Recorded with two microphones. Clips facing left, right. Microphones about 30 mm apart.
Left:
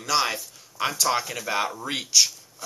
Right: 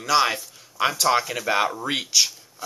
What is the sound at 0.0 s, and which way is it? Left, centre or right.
Speech, centre.